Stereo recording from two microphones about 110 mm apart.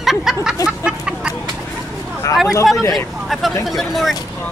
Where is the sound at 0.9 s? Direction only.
10° right (ahead or behind).